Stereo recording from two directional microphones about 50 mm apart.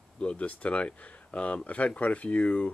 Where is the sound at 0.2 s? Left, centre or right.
Left.